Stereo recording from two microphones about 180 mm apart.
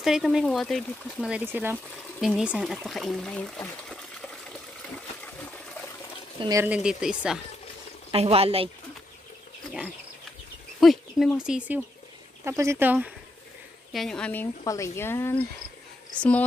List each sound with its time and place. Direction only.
0.0 s speech: centre (ahead or behind)
3.6 s water: 5° left (ahead or behind)
6.6 s speech: 5° right (ahead or behind)
8.1 s speech: 35° right (ahead or behind)
10.8 s bird: centre (ahead or behind)
11.3 s speech: 5° right (ahead or behind)
13.9 s speech: 5° left (ahead or behind)